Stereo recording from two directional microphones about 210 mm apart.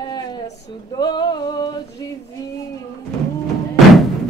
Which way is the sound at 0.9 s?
20° left (ahead or behind).